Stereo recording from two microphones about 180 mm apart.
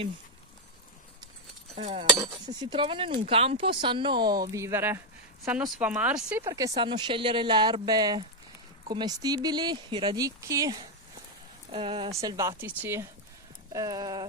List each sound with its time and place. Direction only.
1.8 s speech: 35° right (ahead or behind)
2.1 s speech: 25° right (ahead or behind)